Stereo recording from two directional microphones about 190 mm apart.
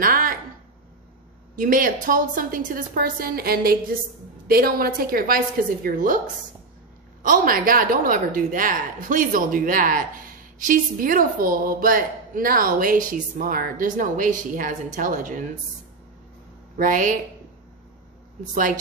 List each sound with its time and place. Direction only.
0.0 s a sound: 50° right (ahead or behind)
1.6 s a woman's voice: 45° right (ahead or behind)
7.2 s a woman's voice: 45° right (ahead or behind)
16.7 s a woman's voice: 45° right (ahead or behind)
18.5 s a woman's voice: 45° right (ahead or behind)